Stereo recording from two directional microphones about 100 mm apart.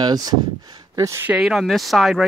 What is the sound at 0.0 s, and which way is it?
Speech, 40° right (ahead or behind).